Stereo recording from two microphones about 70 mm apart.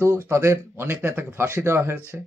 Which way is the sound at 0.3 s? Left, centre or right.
Right.